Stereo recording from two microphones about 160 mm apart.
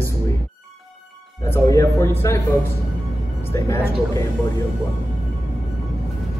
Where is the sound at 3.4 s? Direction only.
15° left (ahead or behind).